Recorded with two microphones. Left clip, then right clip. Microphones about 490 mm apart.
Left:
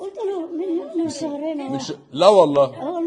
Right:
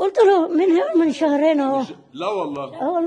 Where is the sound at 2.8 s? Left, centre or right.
Right.